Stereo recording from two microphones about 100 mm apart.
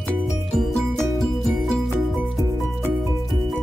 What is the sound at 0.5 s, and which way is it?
Music, centre (ahead or behind).